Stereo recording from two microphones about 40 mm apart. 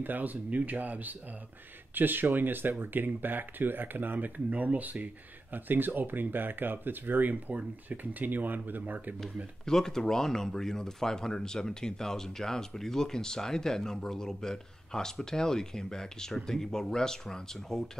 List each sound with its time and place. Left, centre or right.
0.0 s speech: right
4.5 s speech: right
5.5 s speech: right
9.7 s speech: centre